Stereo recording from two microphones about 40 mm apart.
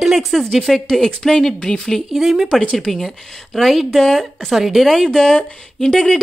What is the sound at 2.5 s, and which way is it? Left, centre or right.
Speech, left.